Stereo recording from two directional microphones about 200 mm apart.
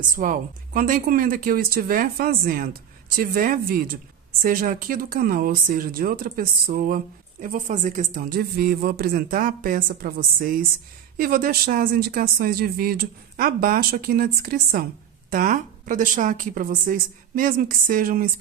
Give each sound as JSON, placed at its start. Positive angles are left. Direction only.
{"t": 0.1, "sound": "speech", "side_deg": -40}